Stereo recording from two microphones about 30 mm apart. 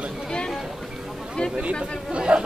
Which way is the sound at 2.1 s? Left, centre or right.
Right.